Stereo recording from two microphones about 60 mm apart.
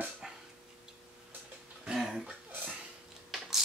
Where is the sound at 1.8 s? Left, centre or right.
Centre.